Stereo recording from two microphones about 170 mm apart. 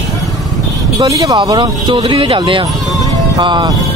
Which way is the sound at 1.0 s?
20° right (ahead or behind).